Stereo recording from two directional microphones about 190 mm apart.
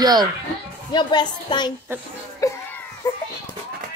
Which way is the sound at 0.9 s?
25° left (ahead or behind).